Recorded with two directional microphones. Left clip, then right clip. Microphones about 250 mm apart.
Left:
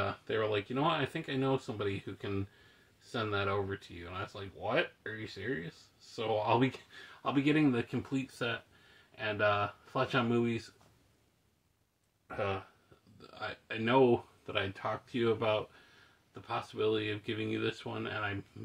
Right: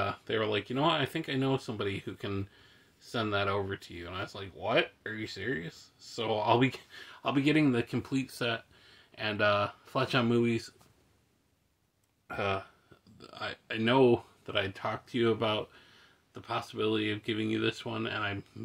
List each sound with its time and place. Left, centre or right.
0.0 s speech: right
12.3 s speech: right